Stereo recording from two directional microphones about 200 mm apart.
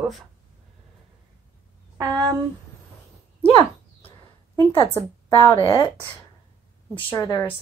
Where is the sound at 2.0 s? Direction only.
20° right (ahead or behind).